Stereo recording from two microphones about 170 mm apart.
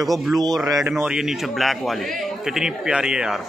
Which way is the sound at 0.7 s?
15° right (ahead or behind).